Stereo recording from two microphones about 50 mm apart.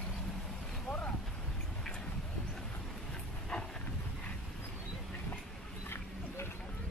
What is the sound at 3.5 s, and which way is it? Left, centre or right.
Vehicle, centre.